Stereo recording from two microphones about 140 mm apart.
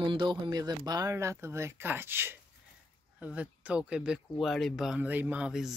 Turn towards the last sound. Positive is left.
turn(degrees=-5)  # may be behind; listen again after turning